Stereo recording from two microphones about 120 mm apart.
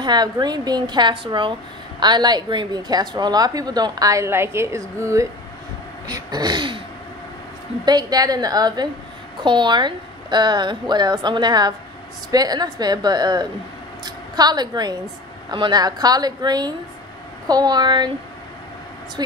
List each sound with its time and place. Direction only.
0.0 s a woman's voice: 35° right (ahead or behind)
6.0 s a woman's voice: 35° right (ahead or behind)
7.8 s a woman's voice: 35° right (ahead or behind)
19.2 s a woman's voice: 35° right (ahead or behind)